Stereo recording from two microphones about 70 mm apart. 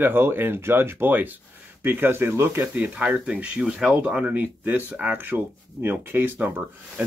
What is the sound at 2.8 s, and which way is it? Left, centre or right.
Speech, right.